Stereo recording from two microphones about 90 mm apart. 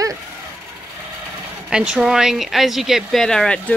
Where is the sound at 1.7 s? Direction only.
10° right (ahead or behind).